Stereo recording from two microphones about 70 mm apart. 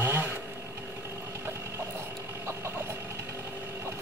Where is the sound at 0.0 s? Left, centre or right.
Right.